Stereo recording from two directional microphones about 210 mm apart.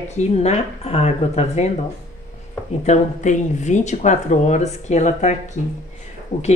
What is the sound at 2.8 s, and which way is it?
Speech, 35° left (ahead or behind).